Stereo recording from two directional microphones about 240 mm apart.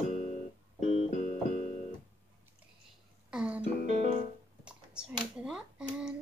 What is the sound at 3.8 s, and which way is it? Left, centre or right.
Music, right.